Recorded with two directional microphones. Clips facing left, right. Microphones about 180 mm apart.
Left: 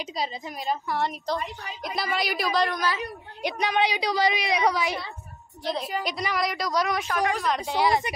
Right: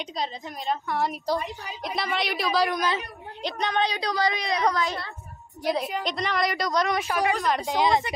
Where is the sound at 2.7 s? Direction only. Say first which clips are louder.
Right 2 dB; 20° right (ahead or behind).